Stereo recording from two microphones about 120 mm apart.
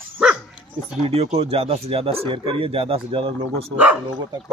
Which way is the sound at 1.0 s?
55° right (ahead or behind).